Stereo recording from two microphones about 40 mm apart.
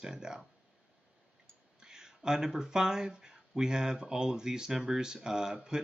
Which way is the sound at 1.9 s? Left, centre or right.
Centre.